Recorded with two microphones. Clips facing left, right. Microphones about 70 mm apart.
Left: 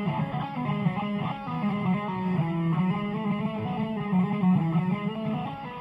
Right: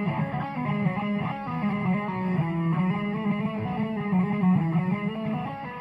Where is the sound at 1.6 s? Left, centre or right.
Right.